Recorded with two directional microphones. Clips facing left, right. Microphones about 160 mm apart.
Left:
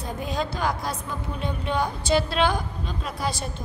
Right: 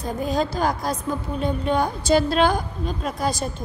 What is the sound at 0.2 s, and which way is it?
A woman's voice, 40° right (ahead or behind).